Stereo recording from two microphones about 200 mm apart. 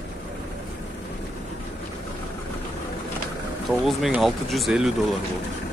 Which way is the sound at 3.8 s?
Centre (ahead or behind).